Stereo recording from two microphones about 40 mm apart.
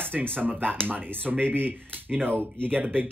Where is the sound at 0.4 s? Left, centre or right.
Right.